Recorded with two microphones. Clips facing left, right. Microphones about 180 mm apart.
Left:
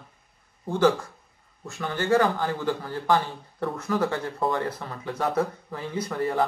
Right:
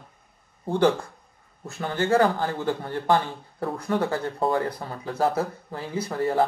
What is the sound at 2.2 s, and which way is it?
Speech, 45° right (ahead or behind).